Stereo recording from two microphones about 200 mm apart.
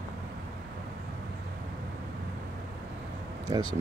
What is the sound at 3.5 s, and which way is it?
Speech, 20° right (ahead or behind).